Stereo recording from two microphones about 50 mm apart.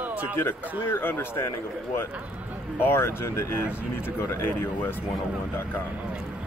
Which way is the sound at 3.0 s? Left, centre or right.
Left.